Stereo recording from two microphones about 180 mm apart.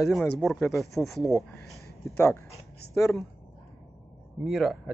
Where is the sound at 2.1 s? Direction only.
15° left (ahead or behind).